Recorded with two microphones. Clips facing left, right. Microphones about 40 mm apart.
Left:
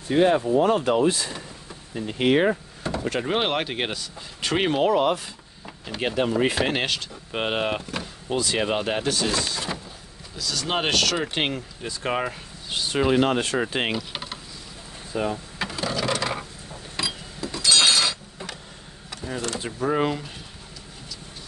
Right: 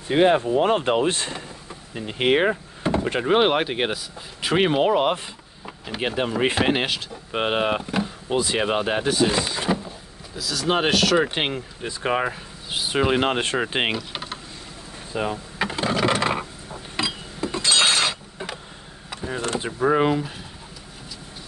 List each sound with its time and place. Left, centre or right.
0.1 s speech: right
2.0 s speech: right
6.4 s speech: right
6.7 s speech: centre
10.3 s speech: centre; by 13.9 s right
13.9 s typing: centre
15.1 s a sound: right
16.9 s chink: right
19.0 s speech: right